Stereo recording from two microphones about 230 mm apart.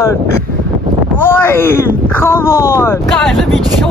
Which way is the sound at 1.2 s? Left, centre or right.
Centre.